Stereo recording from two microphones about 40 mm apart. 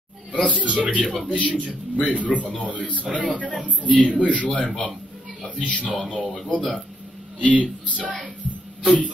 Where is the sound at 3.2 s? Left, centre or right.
Left.